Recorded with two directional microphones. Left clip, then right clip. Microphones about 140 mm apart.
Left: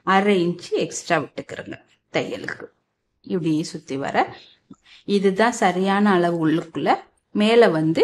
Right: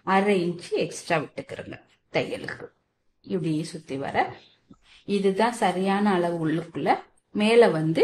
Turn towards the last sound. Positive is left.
turn(degrees=35)  # may be behind; listen again after turning